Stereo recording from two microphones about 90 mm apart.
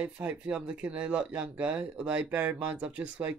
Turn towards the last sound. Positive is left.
turn(degrees=-15)  # may be behind; listen again after turning